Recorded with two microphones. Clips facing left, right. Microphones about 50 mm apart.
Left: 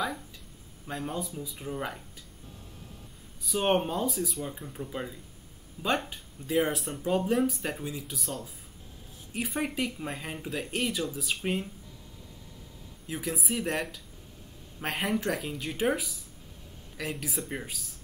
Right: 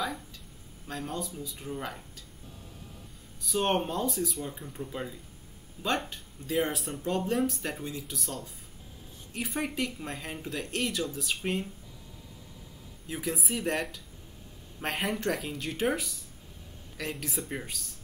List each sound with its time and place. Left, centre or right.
0.8 s speech: centre
3.4 s speech: centre
13.0 s speech: centre